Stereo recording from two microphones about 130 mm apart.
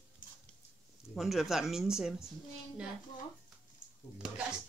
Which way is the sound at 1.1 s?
Centre (ahead or behind).